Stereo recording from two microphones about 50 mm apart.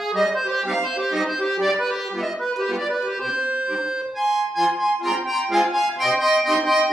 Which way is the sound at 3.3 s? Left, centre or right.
Right.